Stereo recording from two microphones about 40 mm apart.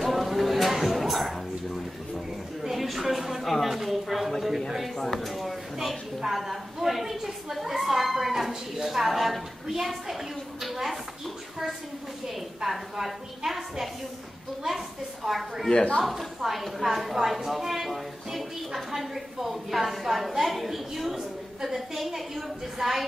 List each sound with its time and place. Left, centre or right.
0.0 s music: centre
2.6 s a sound: centre
4.6 s a woman's voice: centre
10.6 s a sound: centre
12.6 s a woman's voice: centre
15.2 s speech: centre
15.7 s speech: left
16.0 s a woman's voice: centre